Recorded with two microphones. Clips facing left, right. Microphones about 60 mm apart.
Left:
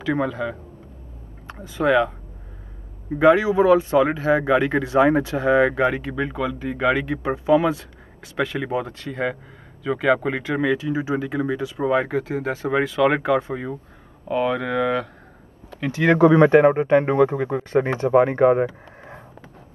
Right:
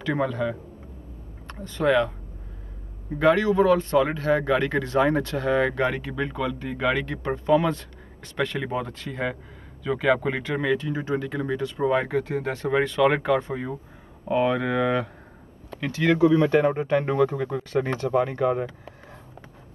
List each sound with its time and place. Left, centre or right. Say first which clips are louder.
0.0 s speech: left 2 dB; centre
3.2 s speech: left 4 dB; centre
16.0 s speech: left 5 dB; left